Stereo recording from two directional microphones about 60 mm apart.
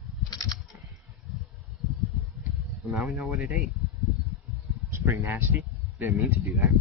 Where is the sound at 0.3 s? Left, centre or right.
Left.